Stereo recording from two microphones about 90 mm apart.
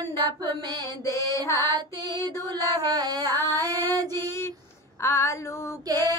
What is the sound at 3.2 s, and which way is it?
Female singing, 30° left (ahead or behind).